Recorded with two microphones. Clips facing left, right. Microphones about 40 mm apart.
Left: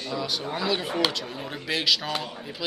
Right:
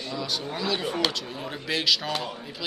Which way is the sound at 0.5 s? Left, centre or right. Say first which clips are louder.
Left 2 dB; centre.